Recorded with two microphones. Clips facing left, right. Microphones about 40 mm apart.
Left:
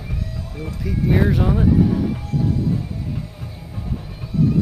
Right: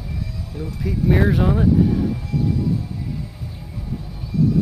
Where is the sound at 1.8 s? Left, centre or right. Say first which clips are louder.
Even; centre.